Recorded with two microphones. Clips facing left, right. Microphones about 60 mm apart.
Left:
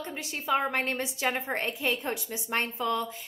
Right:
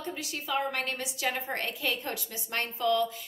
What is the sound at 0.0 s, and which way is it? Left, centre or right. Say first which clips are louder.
A woman's voice: left 1 dB; left.